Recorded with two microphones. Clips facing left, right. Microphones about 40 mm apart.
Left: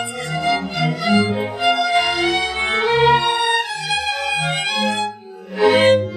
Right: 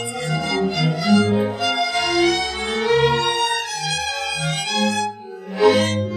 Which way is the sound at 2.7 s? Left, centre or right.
Left.